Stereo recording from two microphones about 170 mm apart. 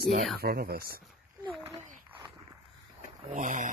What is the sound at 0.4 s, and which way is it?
Speech, 65° right (ahead or behind).